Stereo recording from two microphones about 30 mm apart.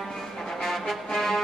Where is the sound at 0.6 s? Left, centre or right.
Centre.